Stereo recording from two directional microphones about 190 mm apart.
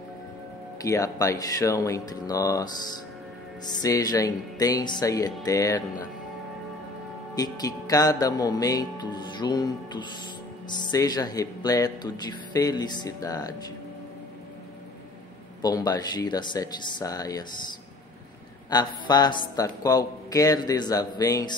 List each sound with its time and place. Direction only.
0.8 s speech: 15° left (ahead or behind)
3.7 s speech: 20° left (ahead or behind)
7.3 s speech: 20° left (ahead or behind)
15.6 s speech: 20° left (ahead or behind)
18.7 s speech: 20° left (ahead or behind)